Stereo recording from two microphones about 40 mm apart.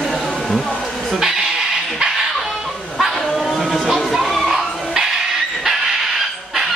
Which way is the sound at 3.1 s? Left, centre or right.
Centre.